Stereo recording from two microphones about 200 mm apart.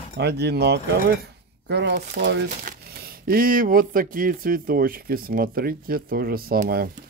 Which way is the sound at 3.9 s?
45° right (ahead or behind).